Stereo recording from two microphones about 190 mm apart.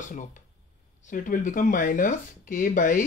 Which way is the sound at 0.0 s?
40° left (ahead or behind).